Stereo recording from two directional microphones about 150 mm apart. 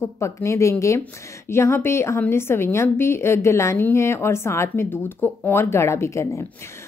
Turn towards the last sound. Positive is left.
turn(degrees=15)  # may be behind; listen again after turning